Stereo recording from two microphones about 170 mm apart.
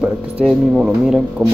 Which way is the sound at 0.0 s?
5° right (ahead or behind).